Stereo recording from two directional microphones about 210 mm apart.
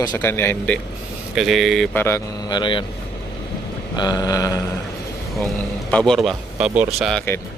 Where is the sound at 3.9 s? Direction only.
20° left (ahead or behind).